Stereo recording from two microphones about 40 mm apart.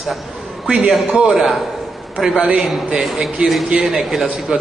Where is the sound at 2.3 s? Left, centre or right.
Right.